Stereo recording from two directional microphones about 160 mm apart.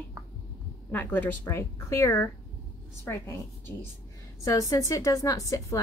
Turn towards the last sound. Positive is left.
turn(degrees=20)  # may be behind; listen again after turning